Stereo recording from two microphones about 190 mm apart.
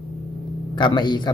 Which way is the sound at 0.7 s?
25° left (ahead or behind).